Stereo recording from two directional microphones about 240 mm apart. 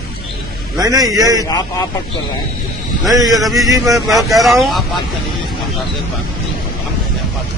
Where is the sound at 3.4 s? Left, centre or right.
Centre.